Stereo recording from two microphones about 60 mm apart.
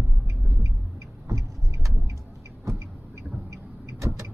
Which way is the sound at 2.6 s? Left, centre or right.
Right.